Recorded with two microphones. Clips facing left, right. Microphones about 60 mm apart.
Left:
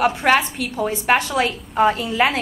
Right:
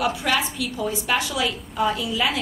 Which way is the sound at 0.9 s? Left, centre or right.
Left.